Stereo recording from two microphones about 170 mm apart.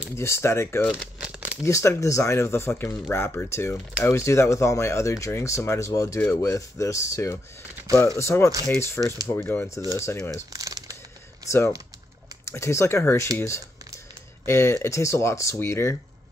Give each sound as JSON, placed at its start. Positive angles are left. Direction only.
{"t": 0.1, "sound": "speech", "side_deg": 15}
{"t": 0.8, "sound": "crumpling", "side_deg": -5}
{"t": 1.6, "sound": "speech", "side_deg": 20}
{"t": 10.5, "sound": "crumpling", "side_deg": -20}
{"t": 11.4, "sound": "speech", "side_deg": 15}
{"t": 14.4, "sound": "speech", "side_deg": 15}